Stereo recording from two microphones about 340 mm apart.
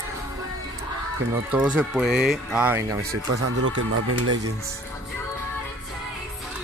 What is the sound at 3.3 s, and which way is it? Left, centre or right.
Speech, right.